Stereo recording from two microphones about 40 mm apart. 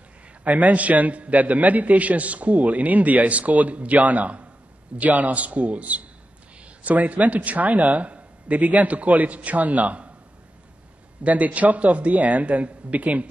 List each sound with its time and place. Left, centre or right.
0.4 s a man's voice: right
11.2 s a man's voice: right